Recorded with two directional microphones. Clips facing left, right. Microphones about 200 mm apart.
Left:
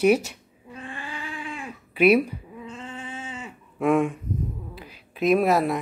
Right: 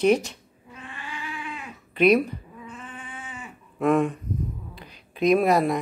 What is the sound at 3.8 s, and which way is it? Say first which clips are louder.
Speech: even; 5° left (ahead or behind).